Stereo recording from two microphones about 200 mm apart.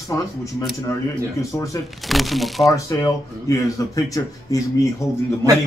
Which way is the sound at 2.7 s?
15° left (ahead or behind).